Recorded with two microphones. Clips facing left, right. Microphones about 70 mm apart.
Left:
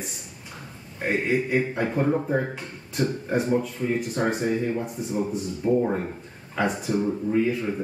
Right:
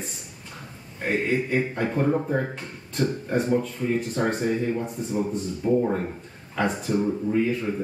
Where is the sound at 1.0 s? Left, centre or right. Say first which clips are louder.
Even; centre.